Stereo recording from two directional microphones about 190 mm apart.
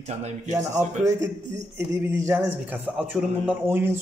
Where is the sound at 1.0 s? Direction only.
15° right (ahead or behind).